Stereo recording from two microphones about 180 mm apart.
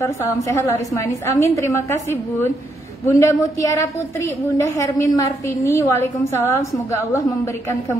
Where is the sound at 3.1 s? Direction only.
15° left (ahead or behind).